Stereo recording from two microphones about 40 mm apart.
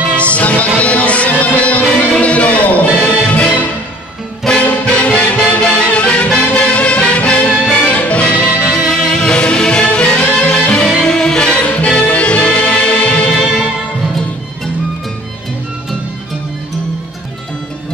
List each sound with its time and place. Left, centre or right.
0.1 s music: left
8.7 s music: centre
11.5 s music: left